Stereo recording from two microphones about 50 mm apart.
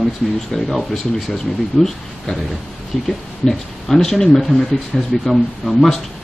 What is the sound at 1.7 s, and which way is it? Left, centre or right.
Speech, left.